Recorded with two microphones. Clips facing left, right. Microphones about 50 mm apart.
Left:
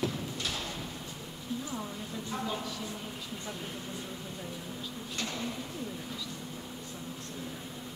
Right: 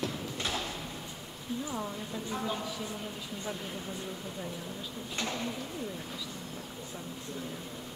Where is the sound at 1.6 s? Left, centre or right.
Centre.